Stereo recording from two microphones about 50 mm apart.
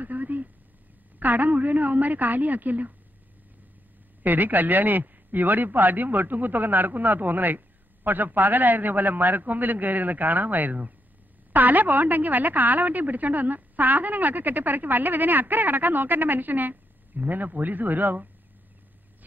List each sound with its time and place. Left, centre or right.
0.0 s a sound: right
1.2 s a woman's voice: right
4.2 s a woman's voice: right